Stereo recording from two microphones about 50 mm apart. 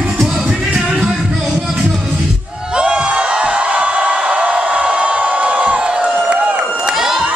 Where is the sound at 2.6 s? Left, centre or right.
Centre.